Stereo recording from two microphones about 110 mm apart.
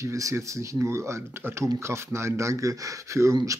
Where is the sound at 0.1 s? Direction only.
30° right (ahead or behind).